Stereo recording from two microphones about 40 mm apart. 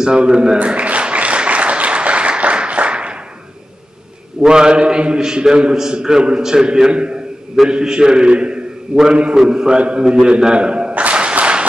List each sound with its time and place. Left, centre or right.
0.0 s a man's voice: right
0.7 s applause: right
4.4 s a man's voice: right
11.1 s a sound: right